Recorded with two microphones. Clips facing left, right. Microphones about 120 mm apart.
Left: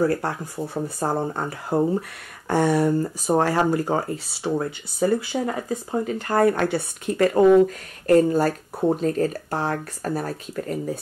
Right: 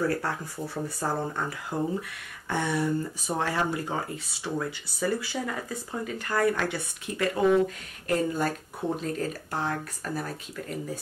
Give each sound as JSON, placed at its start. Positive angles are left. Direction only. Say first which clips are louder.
{"t": 0.0, "sound": "speech", "louder": "left 6 dB", "side_deg": 30}
{"t": 6.3, "sound": "speech", "louder": "left 7 dB", "side_deg": 45}